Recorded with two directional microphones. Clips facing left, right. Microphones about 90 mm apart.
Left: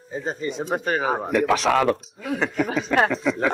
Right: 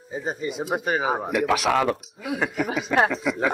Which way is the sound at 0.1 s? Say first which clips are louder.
Left 1 dB; 10° right (ahead or behind).